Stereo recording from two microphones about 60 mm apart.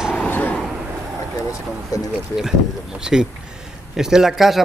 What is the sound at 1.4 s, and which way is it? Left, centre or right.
Vehicle, left.